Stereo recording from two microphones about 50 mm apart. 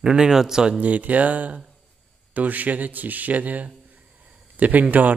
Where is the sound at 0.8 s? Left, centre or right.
Right.